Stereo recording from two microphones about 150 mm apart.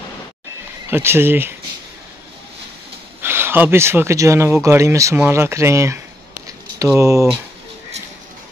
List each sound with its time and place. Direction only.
0.8 s speech: 15° right (ahead or behind)
3.2 s speech: 15° right (ahead or behind)
6.4 s a sound: 20° right (ahead or behind)